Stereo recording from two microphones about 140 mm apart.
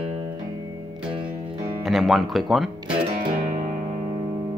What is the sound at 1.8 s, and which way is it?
Speech, centre (ahead or behind).